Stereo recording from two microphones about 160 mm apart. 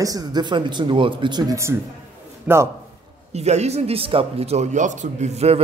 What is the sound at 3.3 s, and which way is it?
Speech, 45° right (ahead or behind).